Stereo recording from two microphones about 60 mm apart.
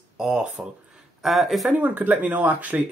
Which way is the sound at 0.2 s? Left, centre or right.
Centre.